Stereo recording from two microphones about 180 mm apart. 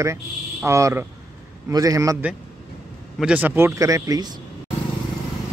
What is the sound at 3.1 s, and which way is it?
Speech, 5° right (ahead or behind).